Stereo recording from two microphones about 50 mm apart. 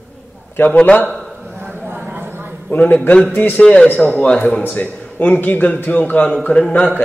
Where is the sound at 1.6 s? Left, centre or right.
Right.